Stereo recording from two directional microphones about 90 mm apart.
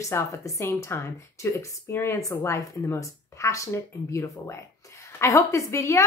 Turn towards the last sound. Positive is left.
turn(degrees=35)  # may be behind; listen again after turning